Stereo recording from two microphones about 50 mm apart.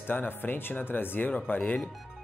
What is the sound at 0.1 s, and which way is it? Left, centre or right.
Speech, left.